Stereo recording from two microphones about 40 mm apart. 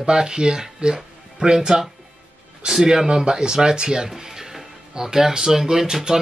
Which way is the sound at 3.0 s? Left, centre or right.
Centre.